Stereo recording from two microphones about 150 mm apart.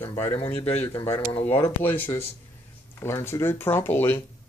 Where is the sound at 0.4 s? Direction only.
40° left (ahead or behind).